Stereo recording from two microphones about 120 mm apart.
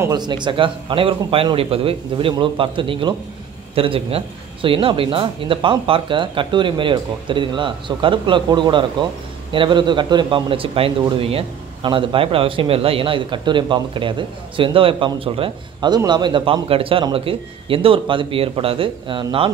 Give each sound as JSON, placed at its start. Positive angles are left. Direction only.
{"t": 0.1, "sound": "speech", "side_deg": -40}
{"t": 15.9, "sound": "speech", "side_deg": -35}